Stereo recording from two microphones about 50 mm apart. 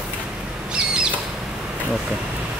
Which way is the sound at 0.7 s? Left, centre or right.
Centre.